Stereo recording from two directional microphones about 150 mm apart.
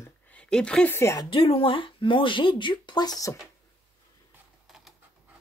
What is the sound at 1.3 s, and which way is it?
Speech, 35° left (ahead or behind).